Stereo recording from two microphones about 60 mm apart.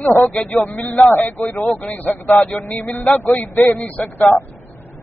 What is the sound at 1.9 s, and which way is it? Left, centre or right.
Speech, left.